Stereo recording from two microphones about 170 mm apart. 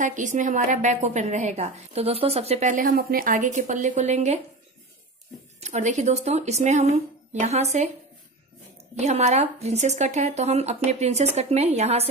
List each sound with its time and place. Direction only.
0.0 s a woman's voice: 45° right (ahead or behind)
5.6 s a woman's voice: 45° right (ahead or behind)
9.0 s speech: 40° right (ahead or behind)